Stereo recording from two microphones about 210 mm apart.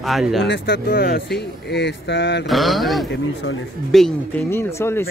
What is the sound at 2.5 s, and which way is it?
Speech, centre (ahead or behind).